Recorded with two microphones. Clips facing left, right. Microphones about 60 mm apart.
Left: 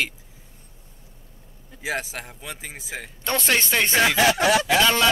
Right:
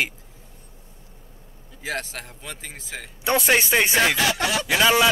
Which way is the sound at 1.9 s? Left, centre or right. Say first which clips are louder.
Left 1 dB; centre.